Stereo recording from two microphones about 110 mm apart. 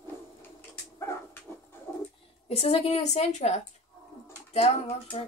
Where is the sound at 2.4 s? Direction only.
70° left (ahead or behind); by 3.6 s 90° left.